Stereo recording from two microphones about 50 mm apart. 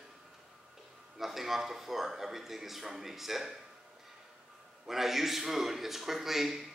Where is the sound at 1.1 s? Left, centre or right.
Centre.